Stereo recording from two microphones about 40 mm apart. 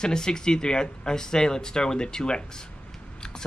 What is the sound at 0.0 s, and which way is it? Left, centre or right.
Speech, centre.